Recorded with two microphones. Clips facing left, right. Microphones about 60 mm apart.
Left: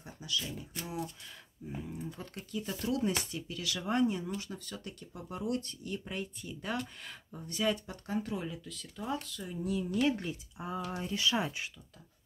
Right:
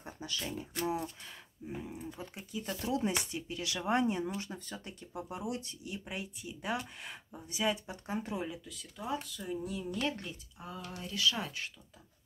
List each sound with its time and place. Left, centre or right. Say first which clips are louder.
0.0 s speech: left 1 dB; right
1.6 s speech: left 1 dB; centre
8.5 s speech: left 1 dB; centre
9.9 s speech: left 7 dB; centre
10.9 s speech: even; left